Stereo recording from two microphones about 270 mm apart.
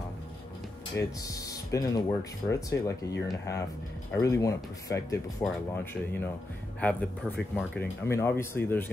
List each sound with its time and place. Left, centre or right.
0.9 s speech: centre
6.8 s speech: centre